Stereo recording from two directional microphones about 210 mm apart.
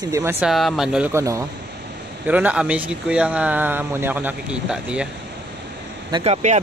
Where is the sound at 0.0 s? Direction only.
15° right (ahead or behind).